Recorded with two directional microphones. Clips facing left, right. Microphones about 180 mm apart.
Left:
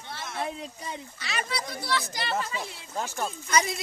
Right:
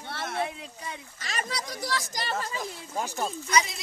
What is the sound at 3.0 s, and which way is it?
Speech, 10° right (ahead or behind).